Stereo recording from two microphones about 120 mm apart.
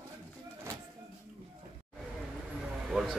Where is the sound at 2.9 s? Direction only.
Centre (ahead or behind).